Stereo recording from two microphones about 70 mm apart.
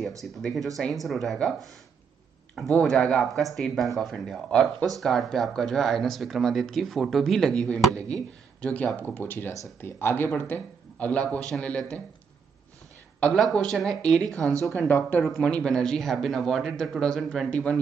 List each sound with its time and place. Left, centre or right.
0.2 s speech: centre
2.8 s speech: centre; by 10.5 s left
10.5 s speech: left
11.5 s speech: centre
13.6 s speech: centre
14.5 s speech: right
14.8 s speech: left
15.4 s speech: centre
17.5 s speech: centre